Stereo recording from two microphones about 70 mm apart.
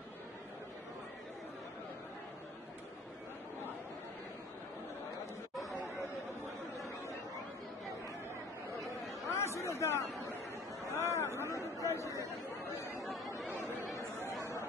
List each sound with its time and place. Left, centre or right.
9.3 s chatter: left
11.0 s a sound: left
12.6 s chatter: left
12.9 s chatter: centre